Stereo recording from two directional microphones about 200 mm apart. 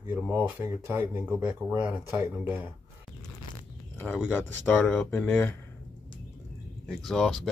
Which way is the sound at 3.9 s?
5° left (ahead or behind).